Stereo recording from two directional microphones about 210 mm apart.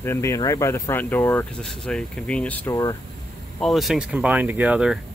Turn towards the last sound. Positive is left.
turn(degrees=-5)  # may be behind; listen again after turning